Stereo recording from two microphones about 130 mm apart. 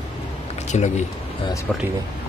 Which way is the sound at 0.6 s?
65° left (ahead or behind).